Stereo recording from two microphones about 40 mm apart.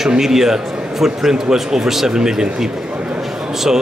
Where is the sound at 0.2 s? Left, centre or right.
Centre.